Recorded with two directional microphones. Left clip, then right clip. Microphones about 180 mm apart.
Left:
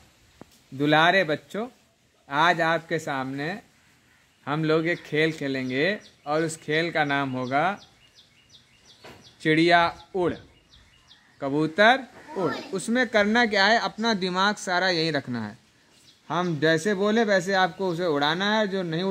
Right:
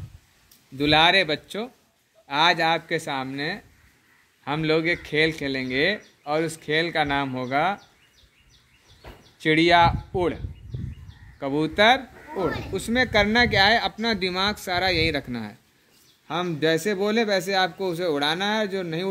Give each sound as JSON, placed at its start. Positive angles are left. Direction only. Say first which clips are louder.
{"t": 0.7, "sound": "speech", "louder": "right 2 dB", "side_deg": 30}
{"t": 9.4, "sound": "a man's voice", "louder": "right 2 dB", "side_deg": 15}